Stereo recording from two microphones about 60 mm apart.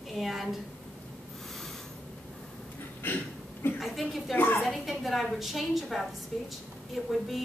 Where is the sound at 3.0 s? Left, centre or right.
Left.